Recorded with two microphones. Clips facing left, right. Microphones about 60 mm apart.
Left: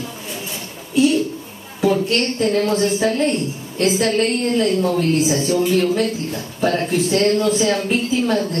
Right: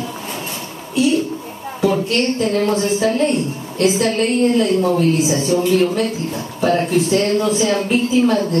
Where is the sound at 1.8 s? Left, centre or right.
Centre.